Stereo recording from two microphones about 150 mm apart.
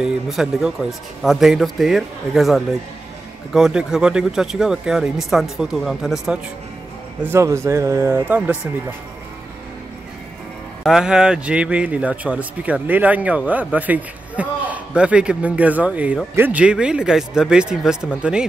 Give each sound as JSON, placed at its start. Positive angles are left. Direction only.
{"t": 0.0, "sound": "speech", "side_deg": -5}
{"t": 7.2, "sound": "speech", "side_deg": -20}
{"t": 10.8, "sound": "speech", "side_deg": 0}